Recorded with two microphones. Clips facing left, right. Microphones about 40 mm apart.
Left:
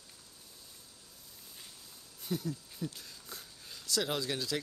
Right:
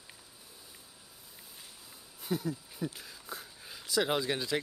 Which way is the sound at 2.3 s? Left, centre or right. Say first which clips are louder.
Right 3 dB; centre.